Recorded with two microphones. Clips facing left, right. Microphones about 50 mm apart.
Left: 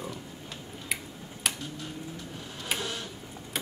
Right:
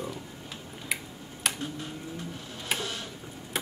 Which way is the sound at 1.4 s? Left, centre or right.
Centre.